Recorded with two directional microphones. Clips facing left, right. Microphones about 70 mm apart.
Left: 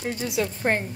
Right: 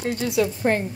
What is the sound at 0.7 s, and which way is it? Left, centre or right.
Speech, left.